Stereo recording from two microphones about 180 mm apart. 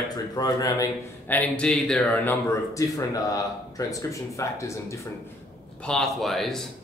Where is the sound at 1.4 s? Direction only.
5° left (ahead or behind).